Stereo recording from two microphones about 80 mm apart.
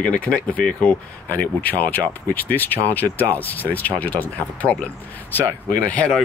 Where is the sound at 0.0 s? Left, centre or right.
Centre.